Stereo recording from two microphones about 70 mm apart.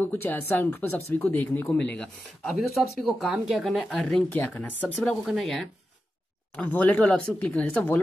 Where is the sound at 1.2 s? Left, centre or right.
Centre.